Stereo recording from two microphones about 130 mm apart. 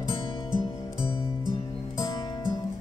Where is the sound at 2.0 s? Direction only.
30° left (ahead or behind).